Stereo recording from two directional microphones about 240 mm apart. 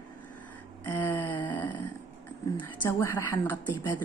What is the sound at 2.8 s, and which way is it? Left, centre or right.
A woman's voice, centre.